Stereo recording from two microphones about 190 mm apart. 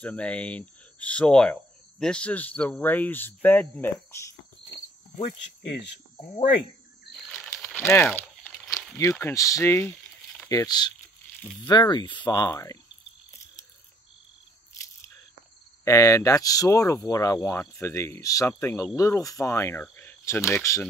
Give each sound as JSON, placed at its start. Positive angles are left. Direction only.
{"t": 0.0, "sound": "speech", "side_deg": 5}
{"t": 5.7, "sound": "speech", "side_deg": 65}
{"t": 7.1, "sound": "a sound", "side_deg": 0}
{"t": 7.6, "sound": "crumpling", "side_deg": 10}
{"t": 8.9, "sound": "speech", "side_deg": 15}
{"t": 15.8, "sound": "speech", "side_deg": 15}